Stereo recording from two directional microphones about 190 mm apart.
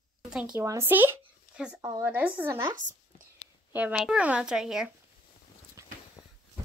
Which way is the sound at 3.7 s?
5° right (ahead or behind).